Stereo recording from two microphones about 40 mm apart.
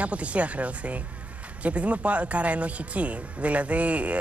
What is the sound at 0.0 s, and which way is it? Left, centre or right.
Speech, right.